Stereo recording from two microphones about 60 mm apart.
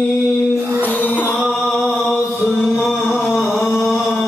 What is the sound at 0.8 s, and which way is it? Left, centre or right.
Music, left.